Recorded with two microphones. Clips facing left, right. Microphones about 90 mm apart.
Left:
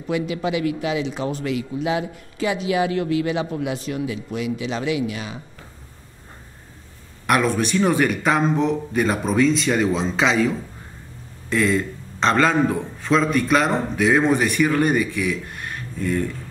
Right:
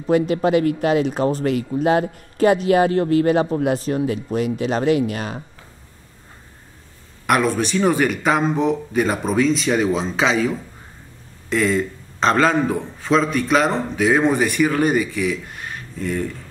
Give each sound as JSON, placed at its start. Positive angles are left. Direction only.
{"t": 0.0, "sound": "speech", "side_deg": -45}
{"t": 7.2, "sound": "a man's voice", "side_deg": 0}